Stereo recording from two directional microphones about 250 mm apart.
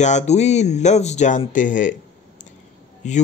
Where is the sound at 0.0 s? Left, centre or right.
Left.